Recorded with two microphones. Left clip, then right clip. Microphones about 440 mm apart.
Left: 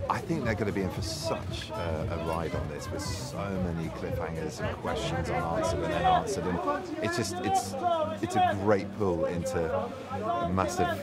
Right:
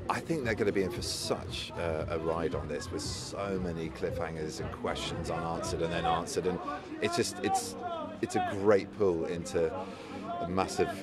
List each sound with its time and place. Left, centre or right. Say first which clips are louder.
0.1 s speech: even; right
5.6 s speech: left 5 dB; right